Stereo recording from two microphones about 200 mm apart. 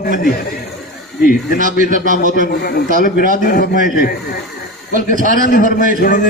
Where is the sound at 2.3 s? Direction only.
45° left (ahead or behind).